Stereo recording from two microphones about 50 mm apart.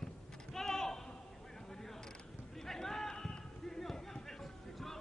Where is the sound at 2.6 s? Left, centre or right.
Centre.